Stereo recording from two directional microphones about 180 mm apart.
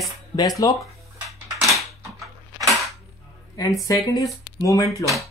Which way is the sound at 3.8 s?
20° left (ahead or behind).